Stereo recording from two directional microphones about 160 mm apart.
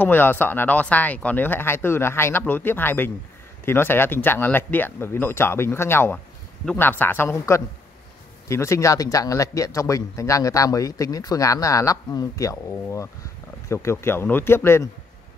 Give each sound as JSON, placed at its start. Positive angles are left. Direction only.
{"t": 0.0, "sound": "a man's voice", "side_deg": 10}